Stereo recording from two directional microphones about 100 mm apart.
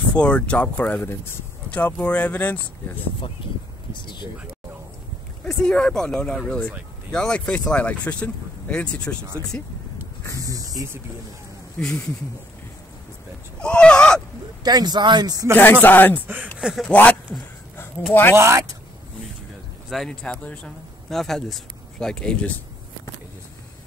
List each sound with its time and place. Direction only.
0.1 s speech: 10° left (ahead or behind)
3.9 s a sound: 50° left (ahead or behind)
5.4 s speech: 10° left (ahead or behind)
9.4 s speech: 40° right (ahead or behind)
11.8 s speech: 20° left (ahead or behind)
13.6 s speech: 10° left (ahead or behind)
14.6 s speech: 45° right (ahead or behind)
15.5 s speech: 20° left (ahead or behind)
16.5 s speech: 5° right (ahead or behind)
16.8 s a man's voice: 10° left (ahead or behind)
18.3 s speech: 25° right (ahead or behind)
19.9 s speech: 5° left (ahead or behind)